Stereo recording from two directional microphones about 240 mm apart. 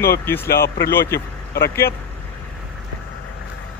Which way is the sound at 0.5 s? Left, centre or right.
Left.